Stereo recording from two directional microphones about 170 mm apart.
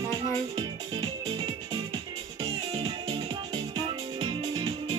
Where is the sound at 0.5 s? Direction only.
30° right (ahead or behind).